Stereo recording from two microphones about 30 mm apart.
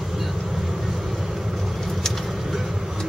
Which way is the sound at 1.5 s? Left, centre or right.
Centre.